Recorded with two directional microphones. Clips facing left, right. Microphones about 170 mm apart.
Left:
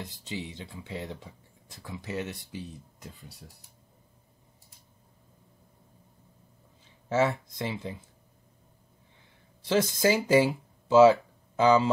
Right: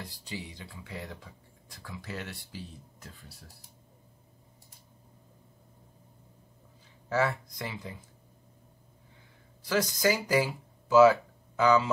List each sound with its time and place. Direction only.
0.0 s speech: 20° left (ahead or behind)
7.1 s speech: 20° left (ahead or behind)
9.6 s speech: 25° left (ahead or behind)